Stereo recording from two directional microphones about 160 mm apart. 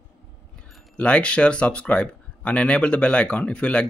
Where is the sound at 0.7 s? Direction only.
5° left (ahead or behind).